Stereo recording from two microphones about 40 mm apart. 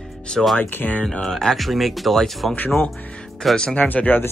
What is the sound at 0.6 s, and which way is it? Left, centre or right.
Speech, left.